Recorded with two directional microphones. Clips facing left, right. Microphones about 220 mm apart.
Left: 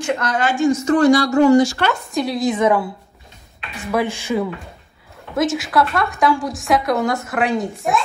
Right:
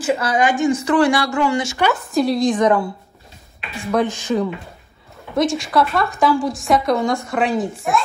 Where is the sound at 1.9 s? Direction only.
Centre (ahead or behind).